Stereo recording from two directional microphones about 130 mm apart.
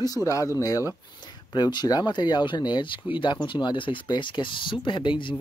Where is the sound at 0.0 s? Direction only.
25° left (ahead or behind).